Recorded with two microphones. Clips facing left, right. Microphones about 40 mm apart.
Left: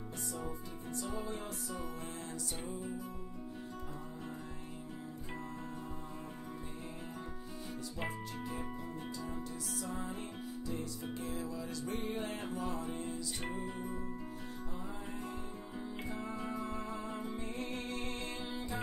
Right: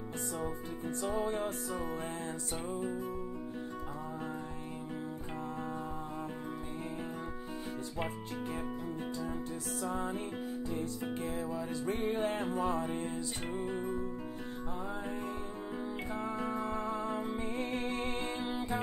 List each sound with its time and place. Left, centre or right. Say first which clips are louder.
0.4 s music: right 5 dB; right
9.8 s music: right 8 dB; right
16.1 s music: right 5 dB; right